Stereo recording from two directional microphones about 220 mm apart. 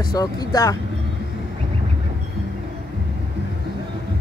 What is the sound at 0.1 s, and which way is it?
Speech, 15° left (ahead or behind).